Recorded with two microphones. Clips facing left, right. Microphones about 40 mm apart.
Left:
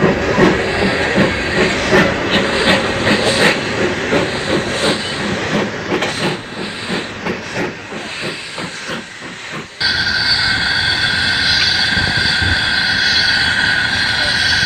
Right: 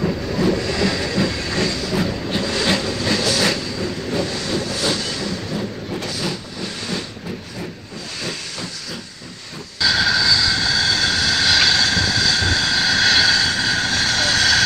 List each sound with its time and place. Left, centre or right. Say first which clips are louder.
0.0 s train: left 8 dB; left
0.6 s train: left 5 dB; left
1.0 s train: left 7 dB; left
1.8 s train: left 10 dB; left
2.4 s train: left 3 dB; left
4.3 s train: left 6 dB; left
5.3 s train: left 8 dB; left
6.0 s train: left 7 dB; left
9.8 s vehicle: left 1 dB; centre
11.9 s vehicle: left 4 dB; left
13.4 s vehicle: left 6 dB; left; by 14.6 s centre